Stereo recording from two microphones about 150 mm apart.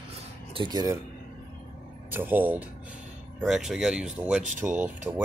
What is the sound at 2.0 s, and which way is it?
Speech, 15° right (ahead or behind).